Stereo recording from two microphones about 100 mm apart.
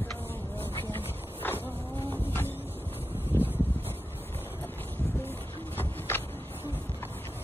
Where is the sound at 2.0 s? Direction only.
20° left (ahead or behind).